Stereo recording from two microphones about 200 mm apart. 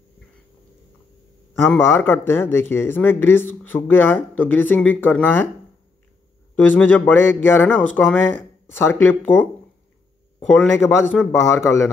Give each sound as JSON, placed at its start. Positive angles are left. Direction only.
{"t": 1.7, "sound": "speech", "side_deg": 10}
{"t": 6.5, "sound": "speech", "side_deg": 10}
{"t": 10.5, "sound": "speech", "side_deg": 5}